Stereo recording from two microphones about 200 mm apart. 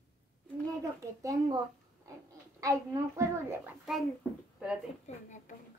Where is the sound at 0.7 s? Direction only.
15° right (ahead or behind).